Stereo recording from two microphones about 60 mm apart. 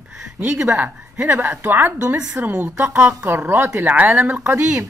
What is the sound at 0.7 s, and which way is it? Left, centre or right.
A woman's voice, right.